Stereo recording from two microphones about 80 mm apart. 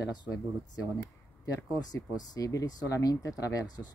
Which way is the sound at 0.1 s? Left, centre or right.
Left.